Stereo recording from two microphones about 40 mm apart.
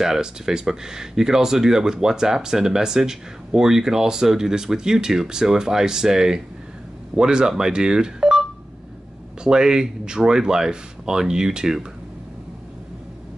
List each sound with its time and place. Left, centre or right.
0.0 s speech: centre